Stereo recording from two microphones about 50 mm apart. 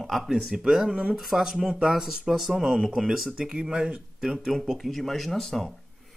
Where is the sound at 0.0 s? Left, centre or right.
Centre.